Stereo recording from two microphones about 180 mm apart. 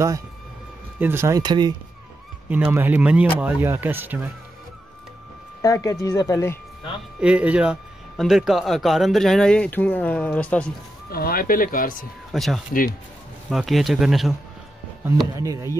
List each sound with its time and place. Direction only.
0.9 s speech: 10° right (ahead or behind)
2.5 s speech: 10° right (ahead or behind)
5.6 s speech: 20° left (ahead or behind)
7.2 s speech: 5° right (ahead or behind)
11.1 s speech: 55° left (ahead or behind)
12.3 s speech: centre (ahead or behind)
15.3 s speech: 15° right (ahead or behind)